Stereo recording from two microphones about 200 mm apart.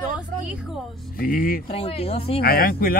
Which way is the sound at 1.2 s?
45° left (ahead or behind).